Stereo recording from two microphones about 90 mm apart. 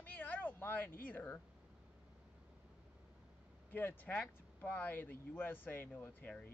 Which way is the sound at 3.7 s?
20° left (ahead or behind).